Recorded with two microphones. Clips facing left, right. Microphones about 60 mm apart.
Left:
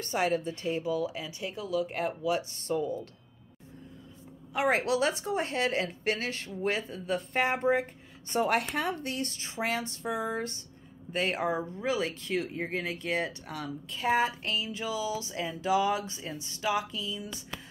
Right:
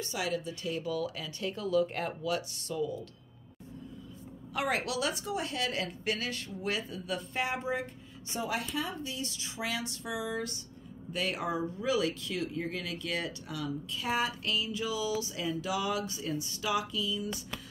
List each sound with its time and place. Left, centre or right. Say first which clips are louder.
0.0 s speech: left 5 dB; left
0.8 s speech: left 3 dB; centre
2.5 s speech: left 3 dB; left
4.6 s a woman's voice: left 5 dB; left